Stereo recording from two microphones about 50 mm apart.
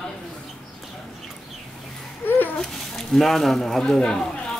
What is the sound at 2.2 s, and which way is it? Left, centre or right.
Babbling, left.